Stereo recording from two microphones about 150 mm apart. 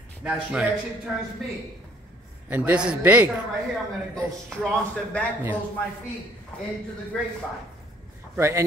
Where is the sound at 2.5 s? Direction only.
10° right (ahead or behind).